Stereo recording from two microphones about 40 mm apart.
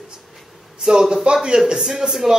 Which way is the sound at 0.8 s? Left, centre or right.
Centre.